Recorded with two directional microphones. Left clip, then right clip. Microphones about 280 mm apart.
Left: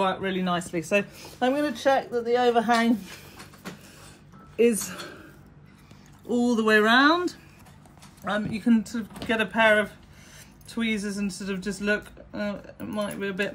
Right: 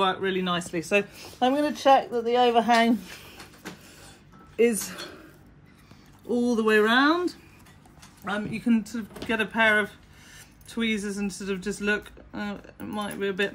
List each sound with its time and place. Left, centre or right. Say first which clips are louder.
0.0 s speech: right 1 dB; centre
1.8 s speech: right 3 dB; right
4.8 s speech: even; centre
6.2 s speech: even; centre